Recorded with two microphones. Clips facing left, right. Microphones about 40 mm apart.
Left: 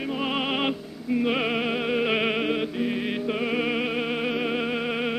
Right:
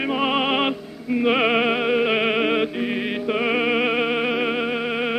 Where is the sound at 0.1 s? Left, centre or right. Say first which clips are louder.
Right 6 dB; right.